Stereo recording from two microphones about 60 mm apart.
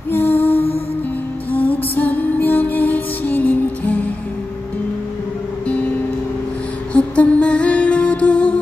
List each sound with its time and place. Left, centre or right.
0.1 s music: left
6.9 s music: left